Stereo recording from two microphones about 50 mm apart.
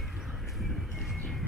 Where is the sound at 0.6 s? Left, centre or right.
Centre.